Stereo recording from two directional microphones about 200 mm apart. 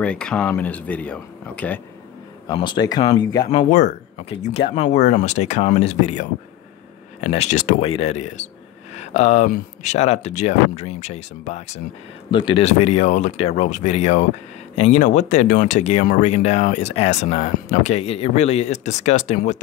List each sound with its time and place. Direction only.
0.0 s speech: 5° left (ahead or behind)
2.4 s speech: 25° left (ahead or behind)
3.5 s speech: 35° left (ahead or behind)
7.2 s speech: 30° left (ahead or behind)
12.3 s speech: 25° left (ahead or behind)